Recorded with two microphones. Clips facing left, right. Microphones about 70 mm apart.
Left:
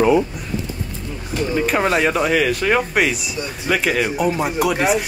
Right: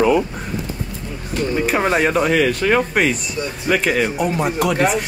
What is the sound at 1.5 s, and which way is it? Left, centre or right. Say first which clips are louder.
Speech: even; centre.